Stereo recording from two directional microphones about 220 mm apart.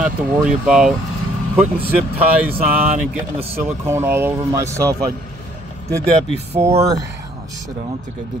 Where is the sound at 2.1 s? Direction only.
5° right (ahead or behind).